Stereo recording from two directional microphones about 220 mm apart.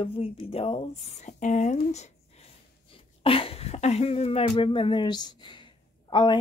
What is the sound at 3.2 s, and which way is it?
Speech, 25° left (ahead or behind).